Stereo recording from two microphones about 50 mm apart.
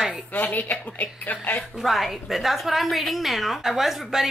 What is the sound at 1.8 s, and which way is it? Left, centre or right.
A woman's voice, centre.